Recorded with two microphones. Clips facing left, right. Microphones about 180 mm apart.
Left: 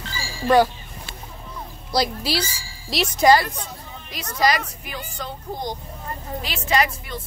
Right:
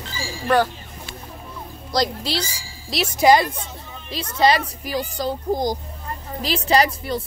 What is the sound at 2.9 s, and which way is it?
Speech, 5° right (ahead or behind).